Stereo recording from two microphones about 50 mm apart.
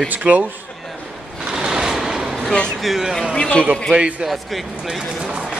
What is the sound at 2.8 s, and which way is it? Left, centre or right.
Speech, centre.